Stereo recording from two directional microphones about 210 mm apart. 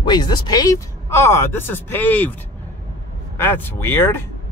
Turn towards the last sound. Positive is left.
turn(degrees=10)  # may be behind; listen again after turning